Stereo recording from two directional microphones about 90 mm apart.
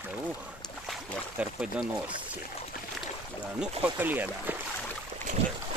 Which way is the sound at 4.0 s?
20° right (ahead or behind).